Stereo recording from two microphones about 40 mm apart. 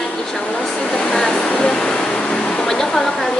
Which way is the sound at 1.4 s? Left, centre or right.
Left.